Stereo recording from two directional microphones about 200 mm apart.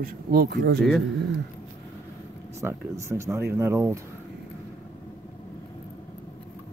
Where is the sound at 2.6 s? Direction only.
15° right (ahead or behind).